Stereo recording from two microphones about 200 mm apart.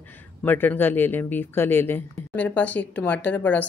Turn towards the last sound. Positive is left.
turn(degrees=10)  # may be behind; listen again after turning